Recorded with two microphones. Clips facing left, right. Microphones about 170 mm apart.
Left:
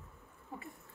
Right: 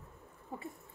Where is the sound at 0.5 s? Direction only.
30° right (ahead or behind).